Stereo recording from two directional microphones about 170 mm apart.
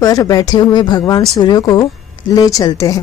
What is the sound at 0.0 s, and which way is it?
A woman's voice, 20° left (ahead or behind).